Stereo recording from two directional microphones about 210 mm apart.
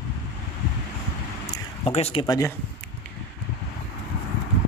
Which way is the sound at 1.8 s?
30° left (ahead or behind).